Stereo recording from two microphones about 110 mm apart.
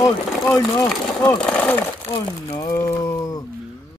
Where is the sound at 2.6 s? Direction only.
30° left (ahead or behind).